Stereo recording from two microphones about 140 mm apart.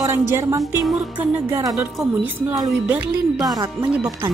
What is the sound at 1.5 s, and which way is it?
Speech, 20° right (ahead or behind).